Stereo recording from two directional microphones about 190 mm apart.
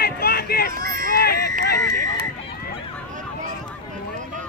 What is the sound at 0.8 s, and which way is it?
Run, 50° right (ahead or behind).